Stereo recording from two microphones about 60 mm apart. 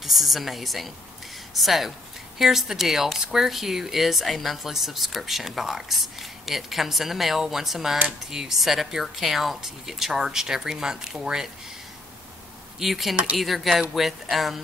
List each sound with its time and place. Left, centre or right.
0.0 s a woman's voice: centre
12.7 s speech: centre
13.1 s speech: centre
13.4 s a woman's voice: centre